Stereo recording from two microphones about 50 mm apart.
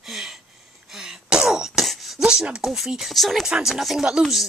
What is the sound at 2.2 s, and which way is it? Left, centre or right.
Speech, centre.